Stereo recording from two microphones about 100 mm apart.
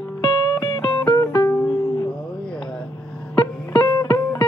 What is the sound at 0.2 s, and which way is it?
Music, 50° left (ahead or behind).